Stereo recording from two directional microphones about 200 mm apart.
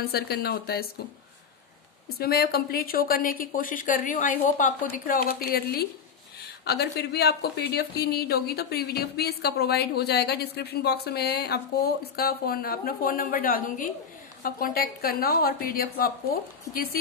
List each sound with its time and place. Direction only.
0.1 s speech: 50° left (ahead or behind)
2.1 s speech: 50° left (ahead or behind)